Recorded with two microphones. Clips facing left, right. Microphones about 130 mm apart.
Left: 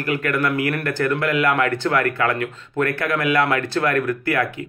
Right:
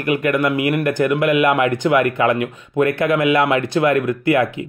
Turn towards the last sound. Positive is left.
turn(degrees=-20)  # may be behind; listen again after turning